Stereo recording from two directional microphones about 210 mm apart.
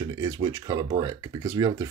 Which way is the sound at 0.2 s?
15° right (ahead or behind).